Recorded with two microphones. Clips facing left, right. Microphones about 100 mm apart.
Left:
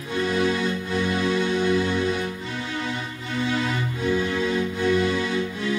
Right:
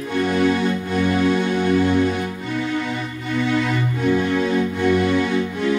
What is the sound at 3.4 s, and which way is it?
Music, 55° right (ahead or behind).